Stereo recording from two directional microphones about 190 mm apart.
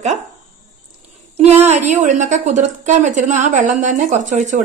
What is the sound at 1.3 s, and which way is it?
A woman's voice, 35° right (ahead or behind).